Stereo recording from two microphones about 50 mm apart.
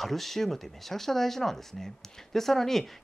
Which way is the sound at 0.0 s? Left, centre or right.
Centre.